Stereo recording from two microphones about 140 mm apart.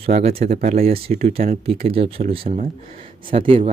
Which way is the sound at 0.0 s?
45° right (ahead or behind).